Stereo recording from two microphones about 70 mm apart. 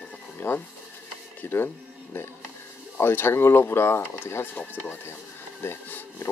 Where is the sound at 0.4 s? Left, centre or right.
Left.